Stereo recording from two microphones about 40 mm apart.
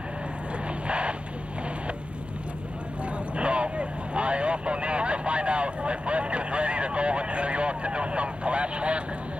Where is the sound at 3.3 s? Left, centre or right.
Right.